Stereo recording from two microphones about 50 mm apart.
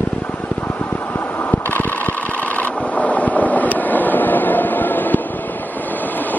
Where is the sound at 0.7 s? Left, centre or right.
Left.